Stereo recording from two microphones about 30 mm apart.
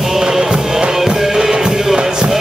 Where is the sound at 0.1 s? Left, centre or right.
Centre.